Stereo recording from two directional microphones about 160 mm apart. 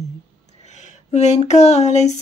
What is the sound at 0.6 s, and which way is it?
Speech, 45° left (ahead or behind).